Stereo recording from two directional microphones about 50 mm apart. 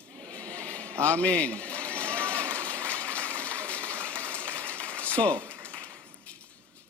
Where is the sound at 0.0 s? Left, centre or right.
Left.